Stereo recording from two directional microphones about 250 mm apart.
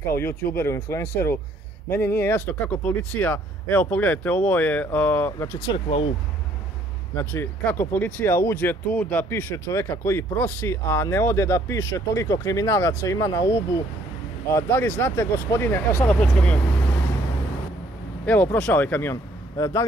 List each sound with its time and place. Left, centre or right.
0.1 s speech: centre
5.7 s speech: left
7.2 s speech: centre
18.2 s speech: centre